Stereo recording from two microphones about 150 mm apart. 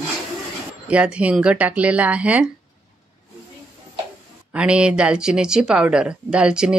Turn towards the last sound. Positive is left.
turn(degrees=-5)  # may be behind; listen again after turning